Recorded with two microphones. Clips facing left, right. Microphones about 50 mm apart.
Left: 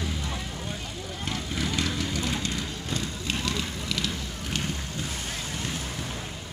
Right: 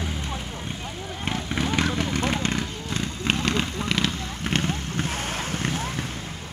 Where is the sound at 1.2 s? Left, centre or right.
Right.